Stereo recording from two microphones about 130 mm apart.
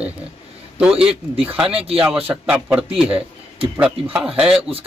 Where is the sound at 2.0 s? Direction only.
15° right (ahead or behind).